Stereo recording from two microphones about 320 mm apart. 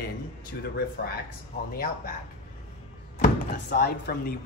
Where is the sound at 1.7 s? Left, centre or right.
Left.